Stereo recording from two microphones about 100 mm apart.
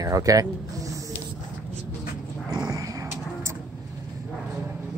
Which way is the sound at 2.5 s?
35° right (ahead or behind).